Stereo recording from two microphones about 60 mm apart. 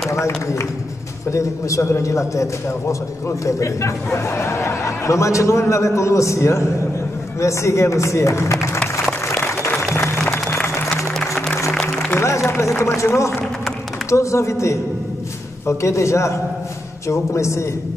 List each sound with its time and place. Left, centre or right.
0.1 s a man's voice: left
9.4 s applause: left
9.8 s music: left
11.1 s music: centre
12.2 s a sound: left
14.1 s a man's voice: left